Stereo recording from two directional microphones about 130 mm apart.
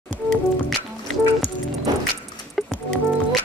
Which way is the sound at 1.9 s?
30° right (ahead or behind).